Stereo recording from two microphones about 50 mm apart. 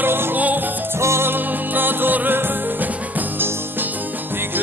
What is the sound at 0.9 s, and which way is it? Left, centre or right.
Music, right.